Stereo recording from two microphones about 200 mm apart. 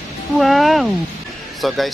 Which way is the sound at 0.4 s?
Centre (ahead or behind).